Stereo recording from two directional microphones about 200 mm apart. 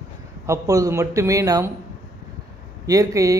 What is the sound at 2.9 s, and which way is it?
Speech, 15° right (ahead or behind).